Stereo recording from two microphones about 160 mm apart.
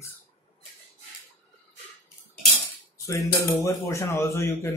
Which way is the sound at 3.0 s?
20° left (ahead or behind).